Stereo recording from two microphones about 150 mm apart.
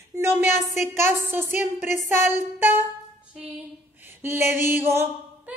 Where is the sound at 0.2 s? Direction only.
15° right (ahead or behind).